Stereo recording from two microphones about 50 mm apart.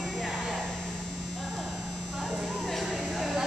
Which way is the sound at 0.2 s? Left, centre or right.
Centre.